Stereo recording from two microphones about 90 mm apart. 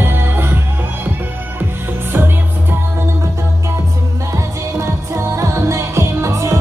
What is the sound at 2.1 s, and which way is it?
Music, 25° right (ahead or behind).